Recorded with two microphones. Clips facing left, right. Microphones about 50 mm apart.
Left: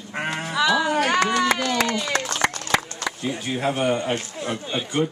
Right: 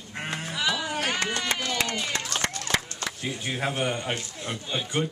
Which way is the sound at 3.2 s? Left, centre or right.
Centre.